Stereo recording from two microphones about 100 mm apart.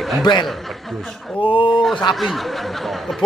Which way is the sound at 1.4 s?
55° left (ahead or behind).